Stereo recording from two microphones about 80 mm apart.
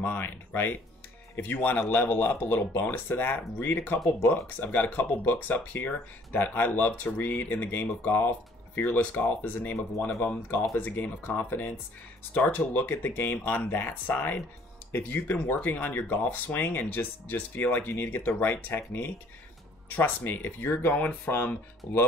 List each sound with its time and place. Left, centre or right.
0.0 s speech: left
10.8 s speech: left